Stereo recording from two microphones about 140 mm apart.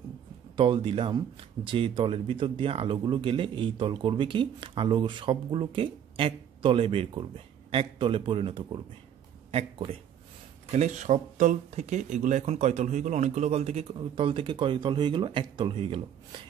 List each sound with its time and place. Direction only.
0.6 s speech: 35° right (ahead or behind)
10.7 s speech: 55° right (ahead or behind); by 16.3 s 40° right (ahead or behind)